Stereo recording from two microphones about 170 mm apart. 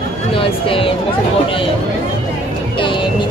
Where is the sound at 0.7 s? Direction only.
30° left (ahead or behind).